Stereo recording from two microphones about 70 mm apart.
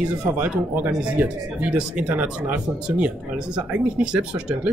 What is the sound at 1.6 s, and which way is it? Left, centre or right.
Speech, centre.